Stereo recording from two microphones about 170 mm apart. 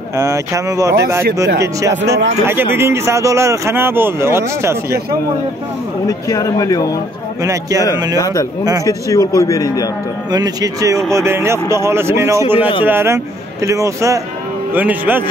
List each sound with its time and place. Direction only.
0.2 s speech: 20° right (ahead or behind)
6.0 s a man's voice: 20° left (ahead or behind)
8.8 s a man's voice: 20° left (ahead or behind)
10.3 s speech: 20° right (ahead or behind)